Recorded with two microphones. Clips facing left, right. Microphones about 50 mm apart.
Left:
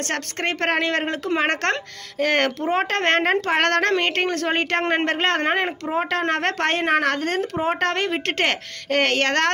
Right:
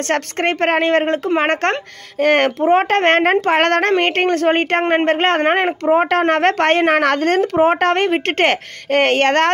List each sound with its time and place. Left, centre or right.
0.1 s a woman's voice: right
7.7 s a woman's voice: right